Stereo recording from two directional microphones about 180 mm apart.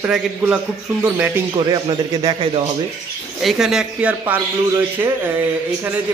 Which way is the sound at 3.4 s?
Centre (ahead or behind).